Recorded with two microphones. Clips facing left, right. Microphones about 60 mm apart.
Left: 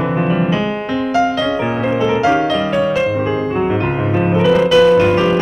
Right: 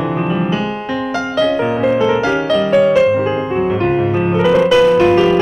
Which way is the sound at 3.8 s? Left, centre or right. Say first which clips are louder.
Right 3 dB; centre.